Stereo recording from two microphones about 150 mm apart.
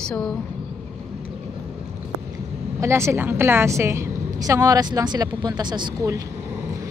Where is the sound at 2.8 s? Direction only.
20° right (ahead or behind).